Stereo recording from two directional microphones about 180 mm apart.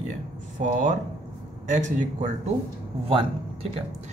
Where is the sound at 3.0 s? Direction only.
30° right (ahead or behind).